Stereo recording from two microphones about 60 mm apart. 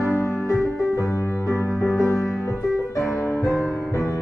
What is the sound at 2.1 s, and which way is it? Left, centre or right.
Music, centre.